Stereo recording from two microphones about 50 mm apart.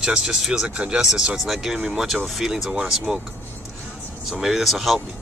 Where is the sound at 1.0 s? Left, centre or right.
Centre.